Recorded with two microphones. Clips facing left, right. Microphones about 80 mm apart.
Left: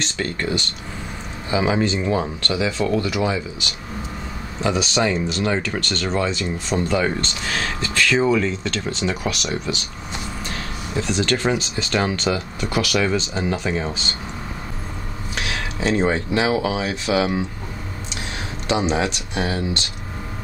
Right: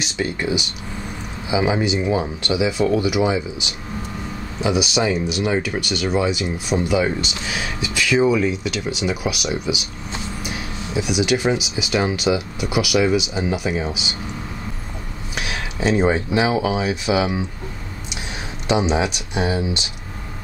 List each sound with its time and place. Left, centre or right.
0.0 s speech: centre
15.3 s speech: centre
18.7 s speech: centre